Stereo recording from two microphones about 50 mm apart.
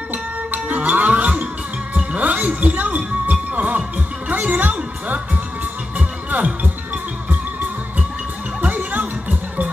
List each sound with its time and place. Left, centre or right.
0.1 s music: right
8.6 s music: right